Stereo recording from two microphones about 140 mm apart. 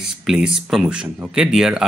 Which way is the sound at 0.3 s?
Centre (ahead or behind).